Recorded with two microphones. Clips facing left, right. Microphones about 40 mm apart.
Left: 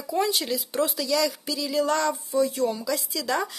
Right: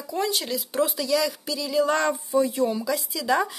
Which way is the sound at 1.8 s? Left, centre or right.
Right.